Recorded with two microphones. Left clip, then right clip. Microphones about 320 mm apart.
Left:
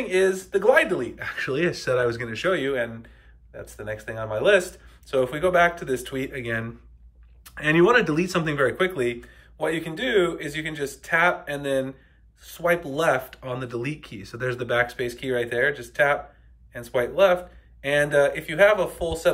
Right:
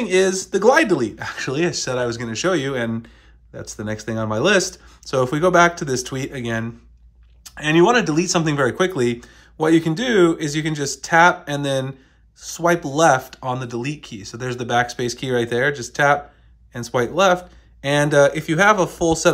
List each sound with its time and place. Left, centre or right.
0.1 s speech: centre